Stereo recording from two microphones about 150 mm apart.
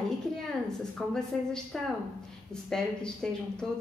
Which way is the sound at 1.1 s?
5° left (ahead or behind).